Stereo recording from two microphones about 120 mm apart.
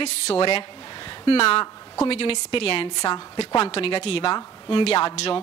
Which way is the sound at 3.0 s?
40° left (ahead or behind).